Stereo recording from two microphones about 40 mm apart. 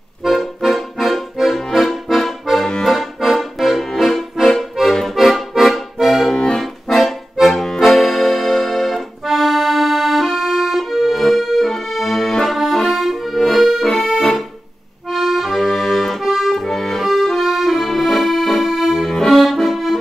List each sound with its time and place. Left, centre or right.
0.2 s accordion: centre
6.2 s accordion: centre
6.6 s accordion: centre
15.0 s accordion: centre
19.0 s accordion: centre
19.3 s accordion: centre